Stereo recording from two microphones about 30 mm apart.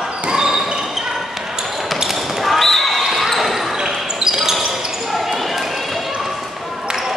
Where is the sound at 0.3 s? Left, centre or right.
Right.